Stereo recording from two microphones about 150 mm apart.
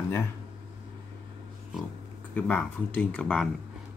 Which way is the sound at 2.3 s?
10° left (ahead or behind).